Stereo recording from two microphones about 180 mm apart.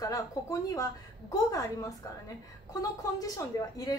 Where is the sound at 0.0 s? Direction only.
20° left (ahead or behind).